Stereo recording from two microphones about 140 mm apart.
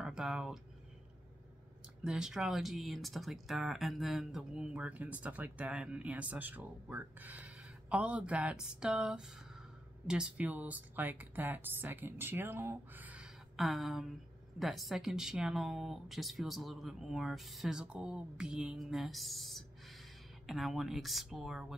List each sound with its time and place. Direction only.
0.0 s speech: 5° right (ahead or behind)
2.0 s speech: 5° right (ahead or behind)